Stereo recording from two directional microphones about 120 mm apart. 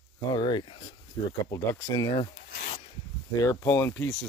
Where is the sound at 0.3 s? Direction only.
40° left (ahead or behind).